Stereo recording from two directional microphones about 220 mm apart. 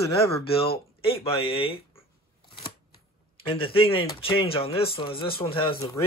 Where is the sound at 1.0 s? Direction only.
25° left (ahead or behind).